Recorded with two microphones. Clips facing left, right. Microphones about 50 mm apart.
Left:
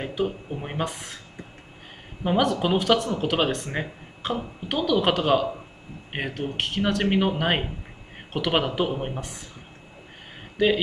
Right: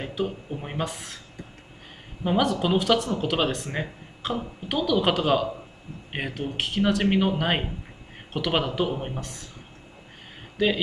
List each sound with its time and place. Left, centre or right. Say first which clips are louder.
0.0 s speech: left 2 dB; centre
2.2 s speech: left 1 dB; centre
10.6 s speech: left 2 dB; centre